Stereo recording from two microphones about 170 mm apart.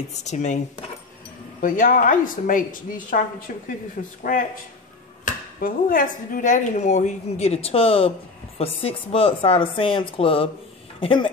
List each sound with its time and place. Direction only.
0.2 s a woman's voice: 45° left (ahead or behind)
1.6 s a woman's voice: 55° left (ahead or behind)
5.6 s a woman's voice: 55° left (ahead or behind); by 11.2 s 30° left (ahead or behind)